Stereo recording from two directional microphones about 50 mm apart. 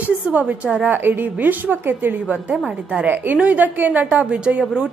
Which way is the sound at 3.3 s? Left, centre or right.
Right.